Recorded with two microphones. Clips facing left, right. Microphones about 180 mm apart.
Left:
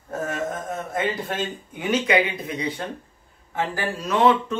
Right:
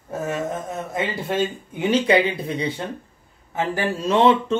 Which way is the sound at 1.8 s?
30° right (ahead or behind).